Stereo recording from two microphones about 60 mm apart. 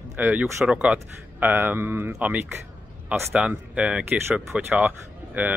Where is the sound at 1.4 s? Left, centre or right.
Right.